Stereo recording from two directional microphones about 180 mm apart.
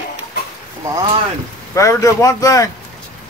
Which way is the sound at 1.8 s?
20° left (ahead or behind).